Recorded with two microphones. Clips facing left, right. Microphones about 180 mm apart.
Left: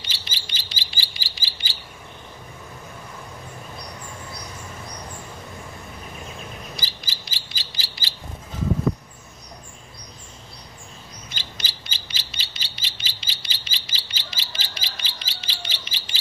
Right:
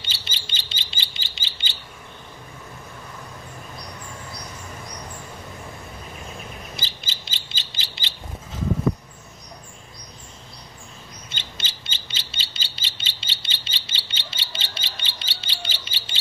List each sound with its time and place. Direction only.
0.0 s bird: 30° right (ahead or behind)
6.8 s bird: 25° right (ahead or behind)
11.2 s bird: 25° right (ahead or behind)